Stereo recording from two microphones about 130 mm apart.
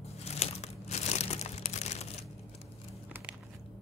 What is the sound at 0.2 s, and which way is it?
Crumpling, 55° left (ahead or behind).